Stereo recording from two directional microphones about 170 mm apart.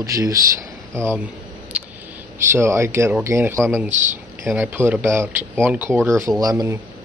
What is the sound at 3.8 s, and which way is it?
Speech, 45° right (ahead or behind).